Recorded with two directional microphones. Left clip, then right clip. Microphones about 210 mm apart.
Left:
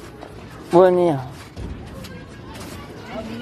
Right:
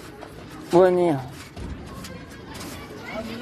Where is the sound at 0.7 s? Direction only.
5° left (ahead or behind).